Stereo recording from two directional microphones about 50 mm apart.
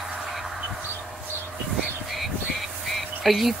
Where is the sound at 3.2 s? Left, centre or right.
Centre.